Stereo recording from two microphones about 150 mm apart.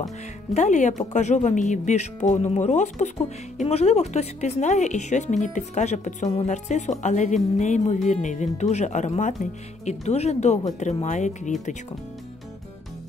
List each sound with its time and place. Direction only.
0.6 s speech: 55° left (ahead or behind)